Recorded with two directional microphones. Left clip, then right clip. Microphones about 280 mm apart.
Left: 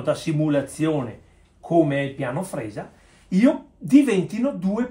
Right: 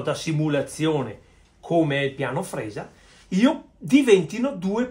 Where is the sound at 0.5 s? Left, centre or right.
Centre.